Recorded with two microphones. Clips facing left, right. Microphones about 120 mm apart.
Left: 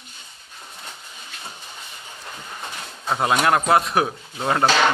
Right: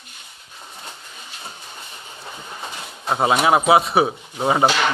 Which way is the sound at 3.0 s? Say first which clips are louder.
Right 2 dB; 5° right (ahead or behind).